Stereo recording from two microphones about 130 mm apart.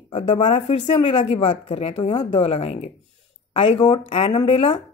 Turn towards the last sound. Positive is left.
turn(degrees=45)  # may be behind; listen again after turning